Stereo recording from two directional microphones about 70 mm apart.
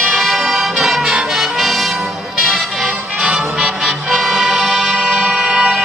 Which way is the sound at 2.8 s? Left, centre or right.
Centre.